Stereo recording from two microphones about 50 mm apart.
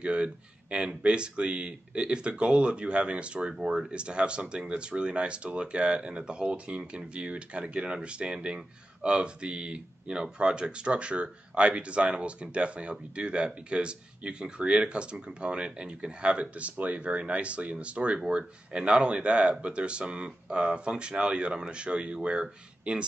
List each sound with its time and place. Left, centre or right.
0.0 s speech: right